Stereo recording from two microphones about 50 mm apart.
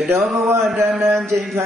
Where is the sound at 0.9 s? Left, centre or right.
Right.